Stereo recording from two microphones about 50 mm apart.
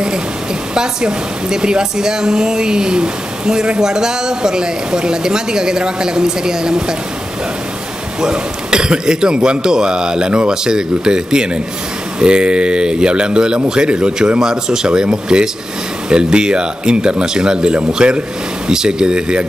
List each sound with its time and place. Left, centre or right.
0.7 s speech: centre
8.2 s speech: centre